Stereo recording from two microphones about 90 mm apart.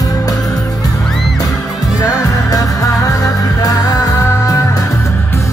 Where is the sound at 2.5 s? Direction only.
40° left (ahead or behind).